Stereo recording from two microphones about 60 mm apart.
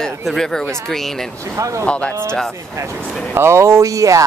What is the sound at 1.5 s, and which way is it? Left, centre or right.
Speech, right.